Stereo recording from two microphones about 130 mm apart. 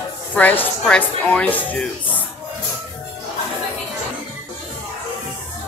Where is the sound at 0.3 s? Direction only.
10° left (ahead or behind).